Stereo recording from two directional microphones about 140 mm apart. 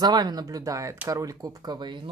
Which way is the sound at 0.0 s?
30° right (ahead or behind).